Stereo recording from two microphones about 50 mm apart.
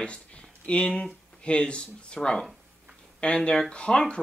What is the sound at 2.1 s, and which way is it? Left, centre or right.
Speech, centre.